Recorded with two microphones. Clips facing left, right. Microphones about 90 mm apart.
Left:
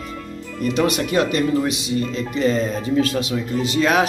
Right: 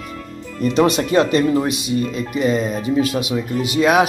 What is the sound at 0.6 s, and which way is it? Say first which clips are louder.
A man's voice: right 4 dB; 25° right (ahead or behind).